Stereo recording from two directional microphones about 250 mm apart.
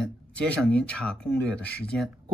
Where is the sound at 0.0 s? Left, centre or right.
Centre.